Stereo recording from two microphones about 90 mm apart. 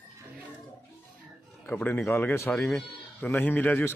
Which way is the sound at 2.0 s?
25° left (ahead or behind).